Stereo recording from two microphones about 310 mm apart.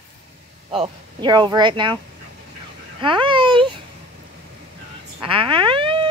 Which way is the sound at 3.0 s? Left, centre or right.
Centre.